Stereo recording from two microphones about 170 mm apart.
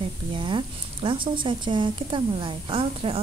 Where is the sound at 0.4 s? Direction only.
30° right (ahead or behind).